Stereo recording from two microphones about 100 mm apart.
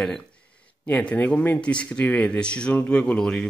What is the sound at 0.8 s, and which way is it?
Speech, 15° left (ahead or behind).